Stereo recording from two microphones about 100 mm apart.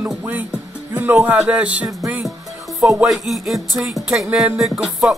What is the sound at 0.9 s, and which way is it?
Speech, 20° right (ahead or behind).